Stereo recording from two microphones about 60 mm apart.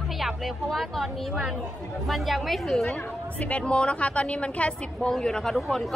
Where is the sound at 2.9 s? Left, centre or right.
Left.